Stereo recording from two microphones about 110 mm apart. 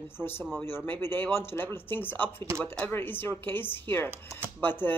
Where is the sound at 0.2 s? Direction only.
20° left (ahead or behind).